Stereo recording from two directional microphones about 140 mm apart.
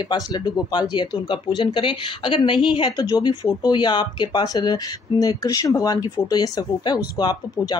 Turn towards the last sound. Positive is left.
turn(degrees=30)  # may be behind; listen again after turning